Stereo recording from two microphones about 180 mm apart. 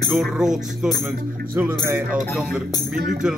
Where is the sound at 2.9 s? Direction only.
50° right (ahead or behind).